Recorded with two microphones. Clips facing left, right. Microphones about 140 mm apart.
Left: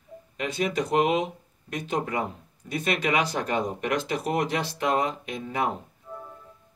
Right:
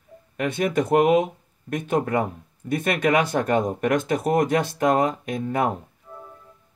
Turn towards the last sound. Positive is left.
turn(degrees=-45)  # may be behind; listen again after turning